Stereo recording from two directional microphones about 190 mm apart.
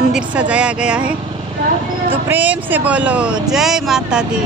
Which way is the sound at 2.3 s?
10° right (ahead or behind).